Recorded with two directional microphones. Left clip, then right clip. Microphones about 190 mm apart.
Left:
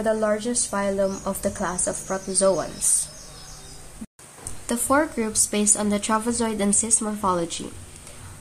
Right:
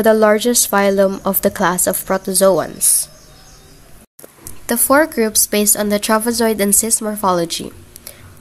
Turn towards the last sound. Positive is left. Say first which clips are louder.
# right 8 dB
turn(degrees=-30)  # may be behind; listen again after turning